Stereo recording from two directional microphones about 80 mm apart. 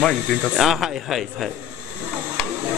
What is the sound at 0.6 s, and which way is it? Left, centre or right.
Speech, centre.